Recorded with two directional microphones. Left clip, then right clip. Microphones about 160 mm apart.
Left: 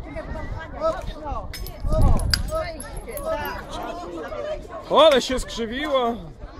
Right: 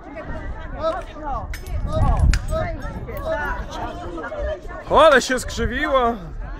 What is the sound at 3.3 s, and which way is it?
Speech, 50° left (ahead or behind).